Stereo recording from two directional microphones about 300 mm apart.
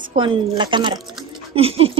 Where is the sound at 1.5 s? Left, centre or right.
Centre.